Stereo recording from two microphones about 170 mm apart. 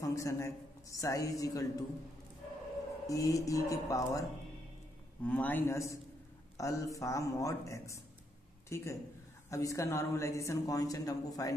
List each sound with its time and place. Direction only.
0.0 s speech: 20° left (ahead or behind)
3.1 s speech: 20° left (ahead or behind)
5.2 s a man's voice: 10° left (ahead or behind)